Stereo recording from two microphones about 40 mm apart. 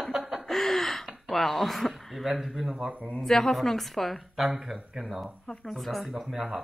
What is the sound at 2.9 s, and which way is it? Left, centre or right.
Speech, right.